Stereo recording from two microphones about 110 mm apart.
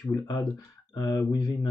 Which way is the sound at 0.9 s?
30° left (ahead or behind).